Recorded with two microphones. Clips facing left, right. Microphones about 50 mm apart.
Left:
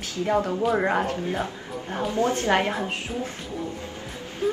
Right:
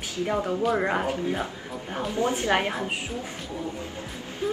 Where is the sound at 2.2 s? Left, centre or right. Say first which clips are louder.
Left 2 dB; centre.